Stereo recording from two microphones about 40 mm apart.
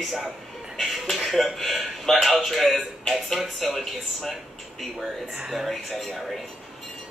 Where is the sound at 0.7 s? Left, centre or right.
Centre.